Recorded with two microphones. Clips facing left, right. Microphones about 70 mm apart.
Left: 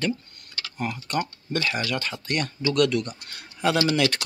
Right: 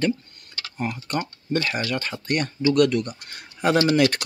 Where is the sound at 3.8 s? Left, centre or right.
Right.